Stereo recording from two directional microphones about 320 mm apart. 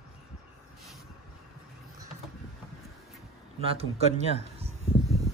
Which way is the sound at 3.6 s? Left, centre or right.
Centre.